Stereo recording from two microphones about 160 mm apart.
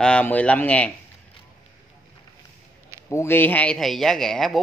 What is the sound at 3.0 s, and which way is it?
Speech, 15° left (ahead or behind).